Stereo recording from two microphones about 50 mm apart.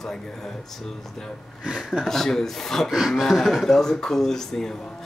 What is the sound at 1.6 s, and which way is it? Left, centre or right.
Speech, centre.